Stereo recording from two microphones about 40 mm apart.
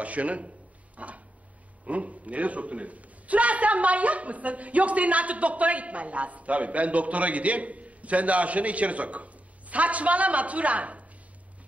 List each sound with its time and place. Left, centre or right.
0.0 s a man's voice: right
0.9 s a sound: right
1.9 s a man's voice: right